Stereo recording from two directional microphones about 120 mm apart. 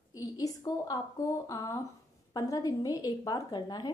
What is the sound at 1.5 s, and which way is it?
A woman's voice, 30° left (ahead or behind).